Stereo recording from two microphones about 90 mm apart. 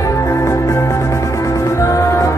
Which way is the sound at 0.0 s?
35° left (ahead or behind).